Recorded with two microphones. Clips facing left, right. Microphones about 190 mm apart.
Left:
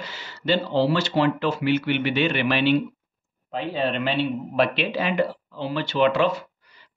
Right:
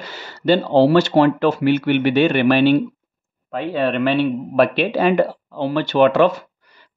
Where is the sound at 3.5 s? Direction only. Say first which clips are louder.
Right 5 dB; 60° right (ahead or behind).